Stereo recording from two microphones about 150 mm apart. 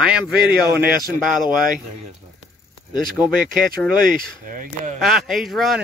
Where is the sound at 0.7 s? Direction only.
90° right.